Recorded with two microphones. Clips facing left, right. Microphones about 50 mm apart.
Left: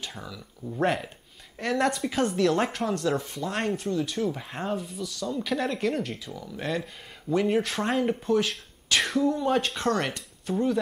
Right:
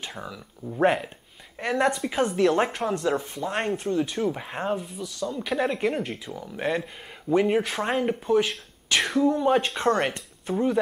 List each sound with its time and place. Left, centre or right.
0.0 s speech: right; by 9.4 s centre
9.4 s speech: centre